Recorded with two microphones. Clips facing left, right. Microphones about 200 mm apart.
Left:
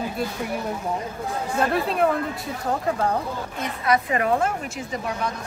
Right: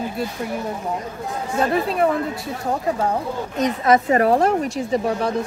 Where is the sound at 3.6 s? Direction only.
40° right (ahead or behind).